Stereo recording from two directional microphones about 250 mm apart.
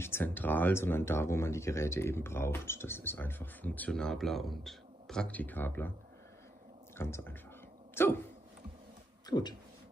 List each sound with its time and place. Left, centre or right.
0.0 s speech: centre
7.0 s speech: centre
9.3 s speech: centre